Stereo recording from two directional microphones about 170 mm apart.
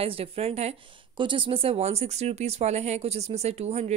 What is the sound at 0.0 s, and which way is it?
A woman's voice, 35° right (ahead or behind).